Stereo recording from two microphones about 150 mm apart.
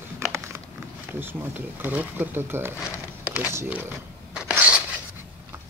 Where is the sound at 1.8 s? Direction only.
10° right (ahead or behind).